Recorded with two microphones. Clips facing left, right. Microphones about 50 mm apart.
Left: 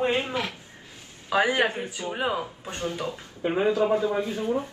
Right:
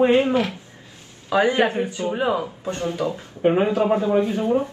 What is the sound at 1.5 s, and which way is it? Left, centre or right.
Speech, right.